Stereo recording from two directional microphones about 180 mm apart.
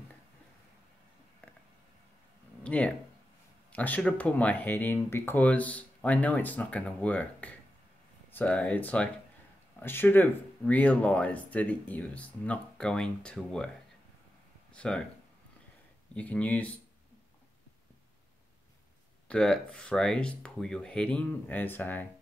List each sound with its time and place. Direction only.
2.6 s a sound: 5° left (ahead or behind)
3.7 s speech: 10° left (ahead or behind)
14.7 s speech: 5° left (ahead or behind)
16.2 s speech: 10° left (ahead or behind)
19.2 s speech: 5° left (ahead or behind)